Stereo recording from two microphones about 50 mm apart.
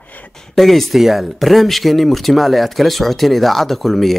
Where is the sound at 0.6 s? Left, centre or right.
Centre.